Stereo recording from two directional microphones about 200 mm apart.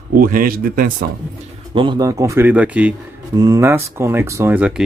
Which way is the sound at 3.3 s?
15° right (ahead or behind).